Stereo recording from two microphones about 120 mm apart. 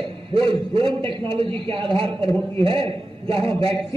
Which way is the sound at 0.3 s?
50° right (ahead or behind).